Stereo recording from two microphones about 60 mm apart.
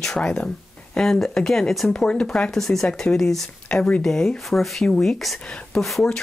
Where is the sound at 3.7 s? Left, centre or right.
Centre.